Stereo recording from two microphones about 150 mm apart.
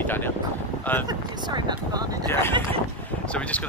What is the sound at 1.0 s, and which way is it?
Speech, 30° right (ahead or behind).